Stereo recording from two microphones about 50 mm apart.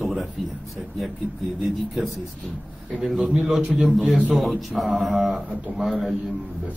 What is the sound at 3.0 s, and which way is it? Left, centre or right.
A man's voice, centre.